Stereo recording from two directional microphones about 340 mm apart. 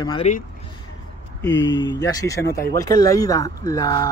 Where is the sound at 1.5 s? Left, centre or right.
Left.